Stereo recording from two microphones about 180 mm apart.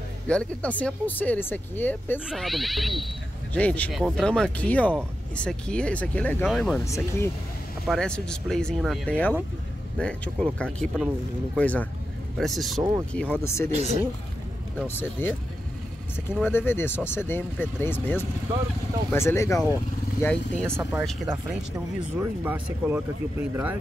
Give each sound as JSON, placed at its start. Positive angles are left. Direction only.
{"t": 0.3, "sound": "speech", "side_deg": 5}
{"t": 2.1, "sound": "speech", "side_deg": 0}
{"t": 6.4, "sound": "speech", "side_deg": 0}
{"t": 6.8, "sound": "speech", "side_deg": 15}
{"t": 7.9, "sound": "speech", "side_deg": 5}
{"t": 13.7, "sound": "speech", "side_deg": -35}
{"t": 15.2, "sound": "speech", "side_deg": 10}
{"t": 21.3, "sound": "speech", "side_deg": -15}